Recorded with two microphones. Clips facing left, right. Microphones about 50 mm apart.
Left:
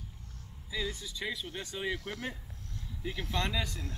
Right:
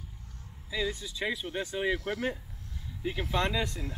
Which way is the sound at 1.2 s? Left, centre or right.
Centre.